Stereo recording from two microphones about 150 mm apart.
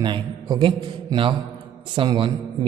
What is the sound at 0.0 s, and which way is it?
A man's voice, 30° right (ahead or behind).